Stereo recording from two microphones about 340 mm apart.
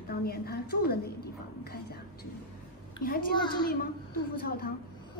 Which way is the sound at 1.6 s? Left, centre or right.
Left.